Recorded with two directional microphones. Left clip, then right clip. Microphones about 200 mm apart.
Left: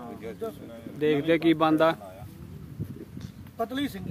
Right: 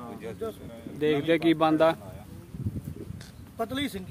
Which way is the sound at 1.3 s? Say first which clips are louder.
Even; 5° left (ahead or behind).